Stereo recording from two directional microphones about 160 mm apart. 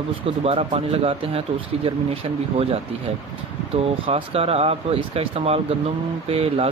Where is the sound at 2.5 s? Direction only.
40° right (ahead or behind).